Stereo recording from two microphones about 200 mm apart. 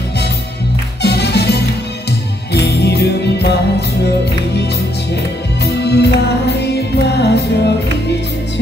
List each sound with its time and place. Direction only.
1.0 s music: 55° left (ahead or behind)
5.8 s music: 60° left (ahead or behind)